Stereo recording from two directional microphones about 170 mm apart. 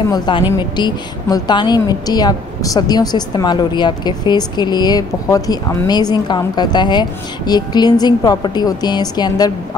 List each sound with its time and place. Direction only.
0.1 s a woman's voice: 30° left (ahead or behind)